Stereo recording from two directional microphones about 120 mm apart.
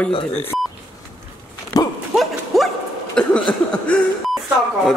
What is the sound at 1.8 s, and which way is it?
Dog, 30° left (ahead or behind).